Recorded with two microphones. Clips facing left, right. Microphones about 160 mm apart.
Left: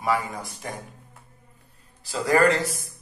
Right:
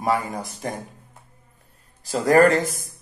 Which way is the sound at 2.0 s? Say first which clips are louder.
Right 5 dB; 45° right (ahead or behind).